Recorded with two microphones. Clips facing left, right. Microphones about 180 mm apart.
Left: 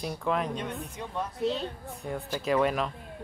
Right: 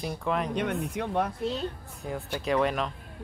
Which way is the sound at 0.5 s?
70° right (ahead or behind).